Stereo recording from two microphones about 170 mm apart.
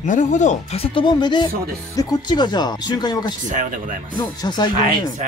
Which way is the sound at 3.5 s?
50° right (ahead or behind).